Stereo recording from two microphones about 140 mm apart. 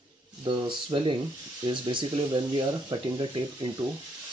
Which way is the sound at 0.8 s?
35° right (ahead or behind).